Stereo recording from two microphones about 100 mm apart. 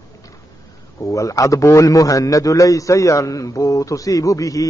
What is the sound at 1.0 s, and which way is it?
A man's voice, 30° left (ahead or behind).